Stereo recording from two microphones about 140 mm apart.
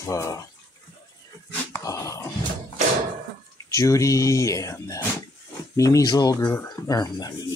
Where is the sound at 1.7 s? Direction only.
20° left (ahead or behind).